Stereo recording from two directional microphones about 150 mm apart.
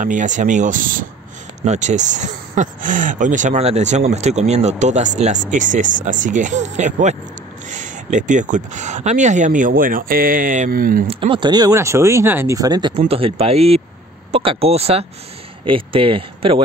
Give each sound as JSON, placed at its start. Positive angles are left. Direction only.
{"t": 0.0, "sound": "speech", "side_deg": -55}
{"t": 1.6, "sound": "speech", "side_deg": -50}
{"t": 11.1, "sound": "speech", "side_deg": -35}
{"t": 13.1, "sound": "speech", "side_deg": -40}